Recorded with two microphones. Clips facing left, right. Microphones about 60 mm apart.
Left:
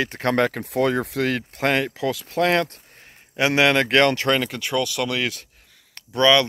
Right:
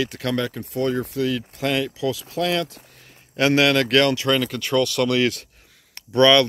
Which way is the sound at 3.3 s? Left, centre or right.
Centre.